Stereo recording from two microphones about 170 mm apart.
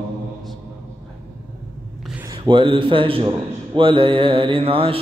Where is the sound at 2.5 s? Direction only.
30° right (ahead or behind).